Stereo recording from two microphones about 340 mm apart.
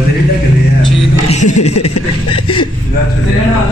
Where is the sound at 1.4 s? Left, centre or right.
Left.